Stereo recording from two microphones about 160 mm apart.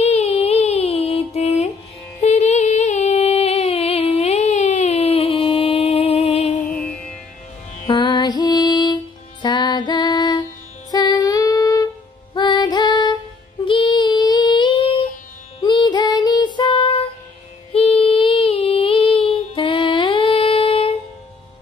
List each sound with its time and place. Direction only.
0.0 s music: 40° left (ahead or behind)
6.7 s music: 5° left (ahead or behind)
7.9 s music: 30° left (ahead or behind)
13.7 s female singing: 30° left (ahead or behind)
15.6 s music: 30° left (ahead or behind)
17.7 s female singing: 40° left (ahead or behind)